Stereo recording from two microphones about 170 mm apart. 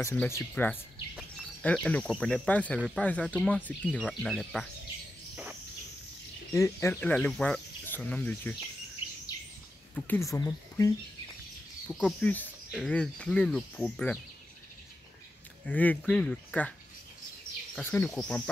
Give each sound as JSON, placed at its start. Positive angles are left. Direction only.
{"t": 0.0, "sound": "speech", "side_deg": 15}
{"t": 5.3, "sound": "bird", "side_deg": -10}
{"t": 6.5, "sound": "speech", "side_deg": 15}
{"t": 9.9, "sound": "speech", "side_deg": 10}
{"t": 11.9, "sound": "speech", "side_deg": 5}
{"t": 15.6, "sound": "speech", "side_deg": 10}
{"t": 17.8, "sound": "speech", "side_deg": 15}